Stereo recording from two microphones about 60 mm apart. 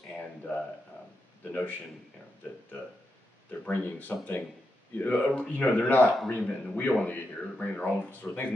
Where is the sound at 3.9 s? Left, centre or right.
Left.